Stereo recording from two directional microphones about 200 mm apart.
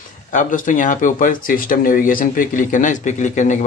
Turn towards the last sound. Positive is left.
turn(degrees=35)  # may be behind; listen again after turning